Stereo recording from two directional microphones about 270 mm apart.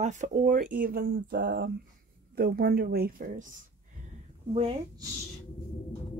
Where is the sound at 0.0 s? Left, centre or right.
Right.